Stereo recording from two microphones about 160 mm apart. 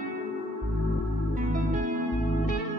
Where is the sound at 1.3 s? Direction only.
55° right (ahead or behind).